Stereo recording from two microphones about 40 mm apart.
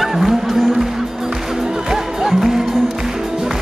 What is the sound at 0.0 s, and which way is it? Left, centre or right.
Music, centre.